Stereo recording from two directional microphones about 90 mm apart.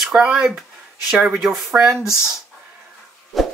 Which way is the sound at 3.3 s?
Centre (ahead or behind).